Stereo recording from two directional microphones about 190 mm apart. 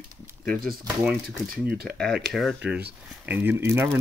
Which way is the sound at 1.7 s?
50° right (ahead or behind).